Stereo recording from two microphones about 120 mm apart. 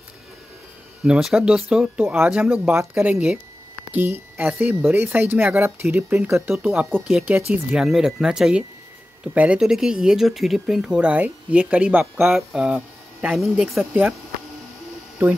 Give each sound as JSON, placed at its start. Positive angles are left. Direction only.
{"t": 1.0, "sound": "a woman's voice", "side_deg": -5}